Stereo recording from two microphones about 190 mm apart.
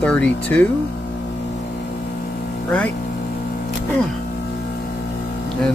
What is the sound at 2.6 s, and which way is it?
Speech, 5° left (ahead or behind).